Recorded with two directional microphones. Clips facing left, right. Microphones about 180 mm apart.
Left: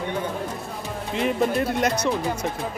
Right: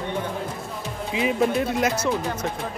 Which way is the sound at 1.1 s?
5° right (ahead or behind).